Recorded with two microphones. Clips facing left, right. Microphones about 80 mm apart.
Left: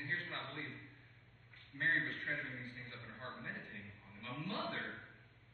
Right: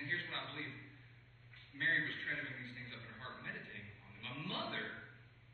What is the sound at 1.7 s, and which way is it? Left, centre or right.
Speech, centre.